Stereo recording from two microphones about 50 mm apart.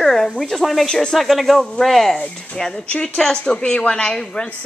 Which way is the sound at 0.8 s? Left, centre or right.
Centre.